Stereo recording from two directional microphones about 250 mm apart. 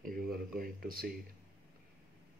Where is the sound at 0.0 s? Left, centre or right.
Right.